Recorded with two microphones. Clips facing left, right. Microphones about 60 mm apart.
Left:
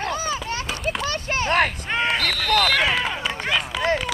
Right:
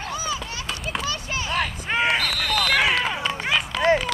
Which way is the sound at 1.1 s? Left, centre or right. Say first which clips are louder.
Left 4 dB; left.